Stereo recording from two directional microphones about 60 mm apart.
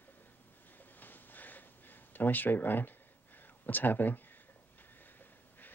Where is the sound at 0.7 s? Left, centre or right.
Left.